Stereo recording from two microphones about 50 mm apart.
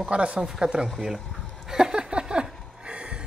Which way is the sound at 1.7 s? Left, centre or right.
Centre.